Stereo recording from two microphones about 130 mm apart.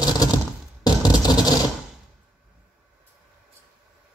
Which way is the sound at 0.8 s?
30° left (ahead or behind).